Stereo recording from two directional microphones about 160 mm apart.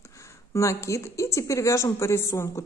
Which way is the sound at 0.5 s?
20° left (ahead or behind).